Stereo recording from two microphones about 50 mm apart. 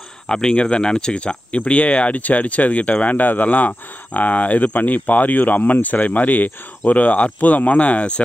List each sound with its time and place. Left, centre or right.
0.3 s speech: centre